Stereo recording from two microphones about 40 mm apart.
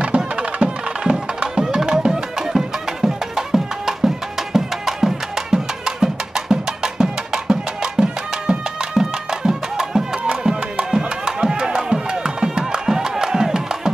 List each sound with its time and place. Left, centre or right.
0.4 s music: right